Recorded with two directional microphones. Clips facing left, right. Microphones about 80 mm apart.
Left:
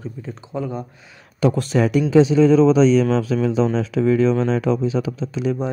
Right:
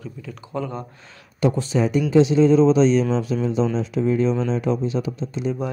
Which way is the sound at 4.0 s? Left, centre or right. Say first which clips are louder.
Left 4 dB; left.